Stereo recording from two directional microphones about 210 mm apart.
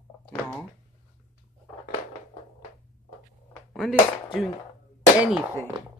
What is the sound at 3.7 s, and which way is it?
Speech, centre (ahead or behind).